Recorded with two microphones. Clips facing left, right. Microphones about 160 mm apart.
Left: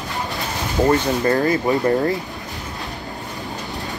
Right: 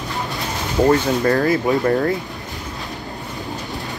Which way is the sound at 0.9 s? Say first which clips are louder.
Right 1 dB; centre (ahead or behind).